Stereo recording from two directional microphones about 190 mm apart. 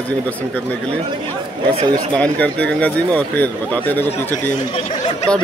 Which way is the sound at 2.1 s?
5° left (ahead or behind).